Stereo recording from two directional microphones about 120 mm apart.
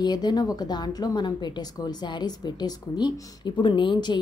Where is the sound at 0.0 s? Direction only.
35° left (ahead or behind).